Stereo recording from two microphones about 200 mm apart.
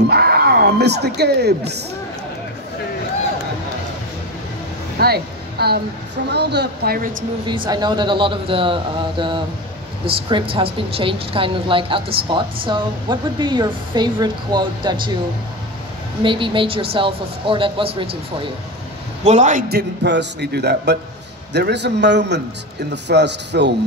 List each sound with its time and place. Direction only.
0.1 s speech: 55° right (ahead or behind)
4.9 s a sound: 50° right (ahead or behind)
6.3 s speech: 55° right (ahead or behind)
7.4 s a woman's voice: 25° right (ahead or behind)
16.2 s a woman's voice: 25° right (ahead or behind)
19.2 s a man's voice: 35° right (ahead or behind)
19.7 s speech: 60° right (ahead or behind)